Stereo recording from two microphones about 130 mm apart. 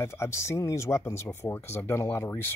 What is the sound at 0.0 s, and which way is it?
Speech, 20° left (ahead or behind).